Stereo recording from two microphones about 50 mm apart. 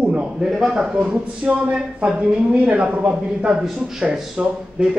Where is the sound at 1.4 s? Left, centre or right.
Right.